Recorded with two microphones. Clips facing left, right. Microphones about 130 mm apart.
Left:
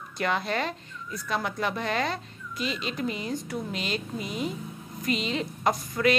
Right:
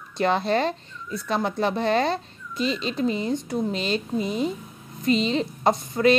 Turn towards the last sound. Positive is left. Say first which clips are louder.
# right 5 dB
turn(degrees=-30)  # may be behind; listen again after turning